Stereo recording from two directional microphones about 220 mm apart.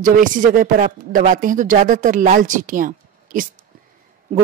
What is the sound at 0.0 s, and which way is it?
Speech, 35° right (ahead or behind).